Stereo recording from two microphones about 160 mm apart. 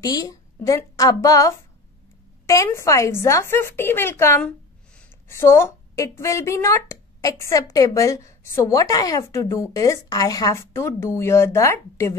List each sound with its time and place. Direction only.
0.0 s a woman's voice: 25° left (ahead or behind)